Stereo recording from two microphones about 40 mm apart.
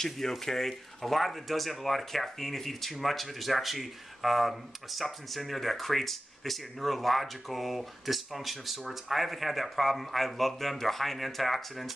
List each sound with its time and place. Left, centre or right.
0.0 s speech: centre